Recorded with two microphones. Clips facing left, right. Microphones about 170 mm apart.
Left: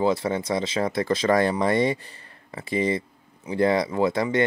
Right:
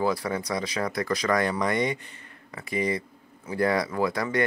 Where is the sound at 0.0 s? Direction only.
25° left (ahead or behind).